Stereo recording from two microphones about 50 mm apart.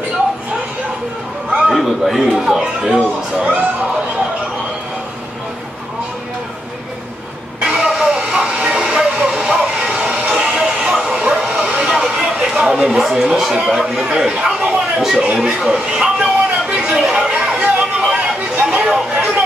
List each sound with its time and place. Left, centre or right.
1.7 s a man's voice: centre; by 3.9 s right
7.6 s train: centre
13.0 s speech: centre
15.3 s a sound: centre
18.9 s chatter: centre